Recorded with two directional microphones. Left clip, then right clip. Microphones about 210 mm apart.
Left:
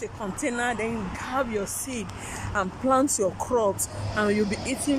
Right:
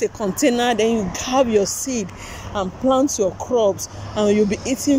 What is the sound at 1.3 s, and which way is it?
Speech, 25° right (ahead or behind).